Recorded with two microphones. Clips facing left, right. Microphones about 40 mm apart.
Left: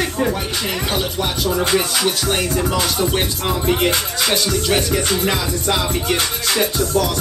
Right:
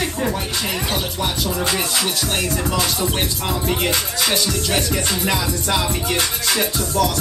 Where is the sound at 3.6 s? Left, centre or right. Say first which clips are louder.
Left 4 dB; centre.